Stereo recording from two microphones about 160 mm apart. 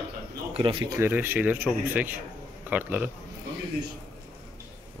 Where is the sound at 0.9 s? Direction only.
15° right (ahead or behind).